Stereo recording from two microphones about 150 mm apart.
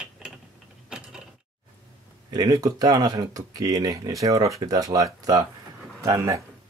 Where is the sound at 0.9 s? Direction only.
5° right (ahead or behind).